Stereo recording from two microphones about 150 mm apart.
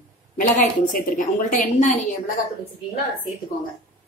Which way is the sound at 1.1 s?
60° left (ahead or behind).